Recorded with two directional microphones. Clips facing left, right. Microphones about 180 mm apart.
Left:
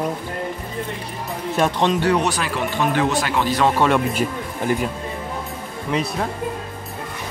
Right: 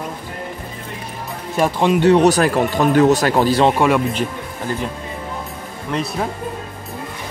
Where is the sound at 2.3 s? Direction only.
45° right (ahead or behind).